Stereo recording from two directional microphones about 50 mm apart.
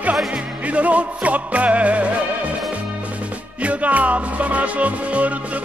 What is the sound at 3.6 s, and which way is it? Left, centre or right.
Music, right.